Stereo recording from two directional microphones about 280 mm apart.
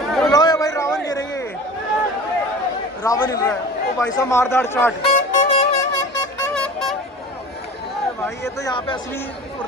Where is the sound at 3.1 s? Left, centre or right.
Centre.